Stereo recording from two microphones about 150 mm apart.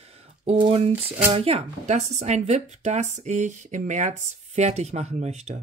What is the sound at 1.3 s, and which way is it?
Speech, 45° right (ahead or behind).